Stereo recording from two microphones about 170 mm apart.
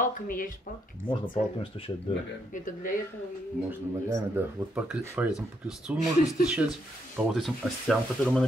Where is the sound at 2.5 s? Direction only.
50° left (ahead or behind).